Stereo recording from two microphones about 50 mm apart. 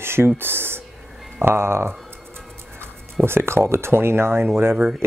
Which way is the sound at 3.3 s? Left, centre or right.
Right.